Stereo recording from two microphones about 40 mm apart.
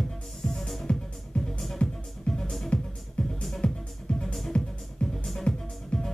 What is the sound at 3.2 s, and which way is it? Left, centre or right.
Music, centre.